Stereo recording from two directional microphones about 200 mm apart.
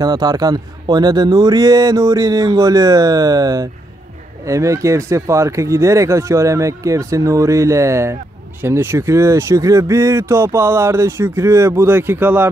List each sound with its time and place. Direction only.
0.0 s speech: 20° right (ahead or behind)